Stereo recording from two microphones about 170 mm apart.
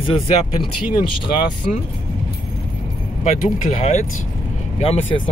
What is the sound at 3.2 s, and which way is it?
Speech, 45° left (ahead or behind).